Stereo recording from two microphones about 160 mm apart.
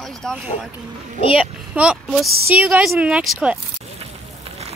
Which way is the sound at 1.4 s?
5° right (ahead or behind).